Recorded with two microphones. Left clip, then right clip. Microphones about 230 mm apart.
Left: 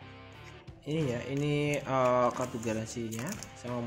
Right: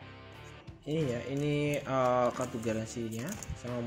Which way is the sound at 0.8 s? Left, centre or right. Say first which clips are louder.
Even; centre.